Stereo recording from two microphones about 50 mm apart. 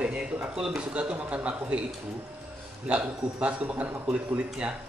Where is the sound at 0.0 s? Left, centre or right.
Centre.